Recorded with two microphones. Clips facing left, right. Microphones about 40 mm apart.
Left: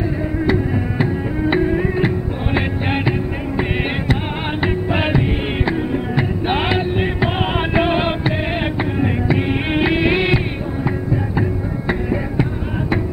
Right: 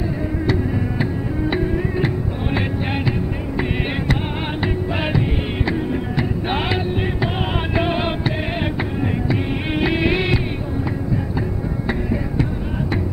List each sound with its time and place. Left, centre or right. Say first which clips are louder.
0.5 s music: left 3 dB; centre
11.9 s music: left 3 dB; centre